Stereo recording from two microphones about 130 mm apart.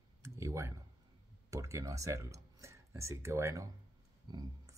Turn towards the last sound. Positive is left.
turn(degrees=-30)  # may be behind; listen again after turning